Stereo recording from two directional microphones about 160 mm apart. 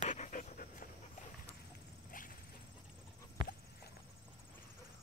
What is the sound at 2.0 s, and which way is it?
Horse, 60° left (ahead or behind).